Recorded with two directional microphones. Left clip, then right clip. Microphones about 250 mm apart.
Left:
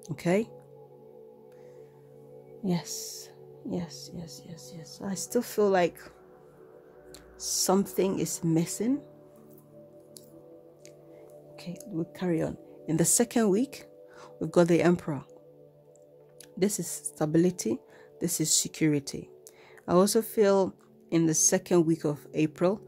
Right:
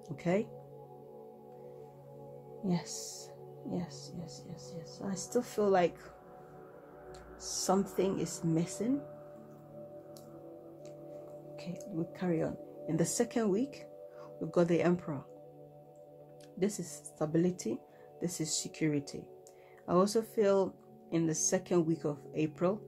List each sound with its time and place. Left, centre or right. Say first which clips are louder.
0.1 s speech: left 5 dB; left
2.6 s speech: left 5 dB; left
7.3 s speech: left 5 dB; left
11.5 s speech: left 4 dB; left
16.5 s speech: left 6 dB; left